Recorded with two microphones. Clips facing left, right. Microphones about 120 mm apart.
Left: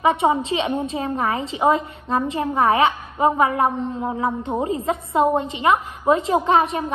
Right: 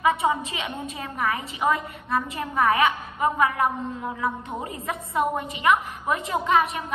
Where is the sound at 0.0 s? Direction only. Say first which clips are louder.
Left 4 dB; 25° left (ahead or behind).